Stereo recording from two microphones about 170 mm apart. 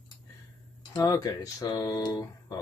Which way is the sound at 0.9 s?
20° left (ahead or behind).